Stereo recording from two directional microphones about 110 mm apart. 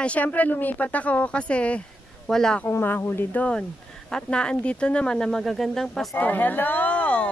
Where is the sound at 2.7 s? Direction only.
20° left (ahead or behind); by 6.0 s centre (ahead or behind).